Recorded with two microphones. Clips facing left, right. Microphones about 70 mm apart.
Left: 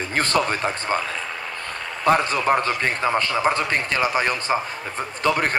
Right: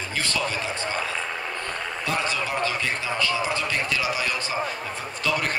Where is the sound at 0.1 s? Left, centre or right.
Left.